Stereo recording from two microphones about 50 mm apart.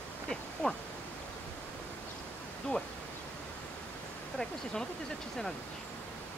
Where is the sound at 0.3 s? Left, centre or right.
Centre.